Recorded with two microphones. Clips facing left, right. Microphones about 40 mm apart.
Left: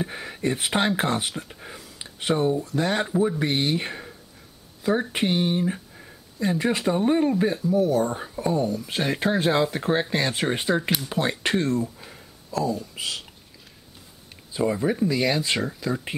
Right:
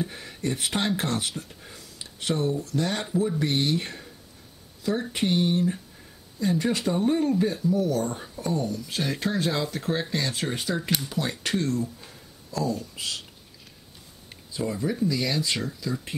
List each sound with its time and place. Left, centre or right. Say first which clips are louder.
0.0 s speech: left 3 dB; left
5.1 s speech: left 1 dB; centre
14.5 s speech: left 5 dB; left